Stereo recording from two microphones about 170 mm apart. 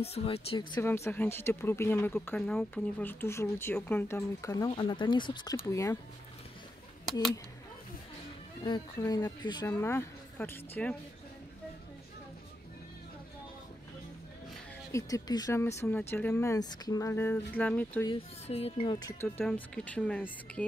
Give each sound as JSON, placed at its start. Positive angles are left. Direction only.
{"t": 0.0, "sound": "speech", "side_deg": 35}
{"t": 0.8, "sound": "speech", "side_deg": 15}
{"t": 7.1, "sound": "speech", "side_deg": 0}
{"t": 9.0, "sound": "speech", "side_deg": 25}
{"t": 9.8, "sound": "speech", "side_deg": 15}
{"t": 14.9, "sound": "speech", "side_deg": 20}
{"t": 18.0, "sound": "speech", "side_deg": 35}
{"t": 19.4, "sound": "speech", "side_deg": 5}